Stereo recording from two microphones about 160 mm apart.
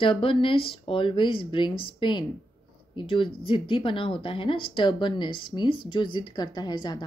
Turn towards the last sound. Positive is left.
turn(degrees=25)  # may be behind; listen again after turning